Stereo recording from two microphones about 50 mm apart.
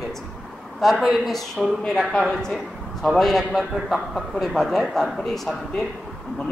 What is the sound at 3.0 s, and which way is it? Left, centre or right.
A man's voice, centre.